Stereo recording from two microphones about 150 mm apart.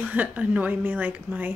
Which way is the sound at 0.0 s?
10° right (ahead or behind).